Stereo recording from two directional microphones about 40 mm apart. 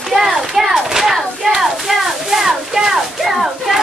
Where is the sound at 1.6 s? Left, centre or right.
Centre.